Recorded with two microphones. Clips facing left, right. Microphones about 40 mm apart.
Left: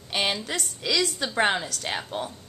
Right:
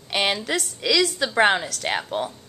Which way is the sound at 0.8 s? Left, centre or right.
Right.